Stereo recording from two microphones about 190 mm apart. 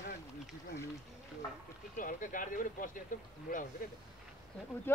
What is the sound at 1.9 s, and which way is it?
Speech, 45° left (ahead or behind).